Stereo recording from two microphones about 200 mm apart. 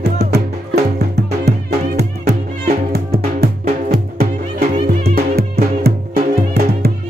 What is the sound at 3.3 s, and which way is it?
Music, 50° right (ahead or behind).